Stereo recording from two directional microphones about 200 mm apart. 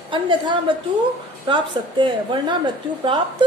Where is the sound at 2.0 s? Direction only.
25° right (ahead or behind).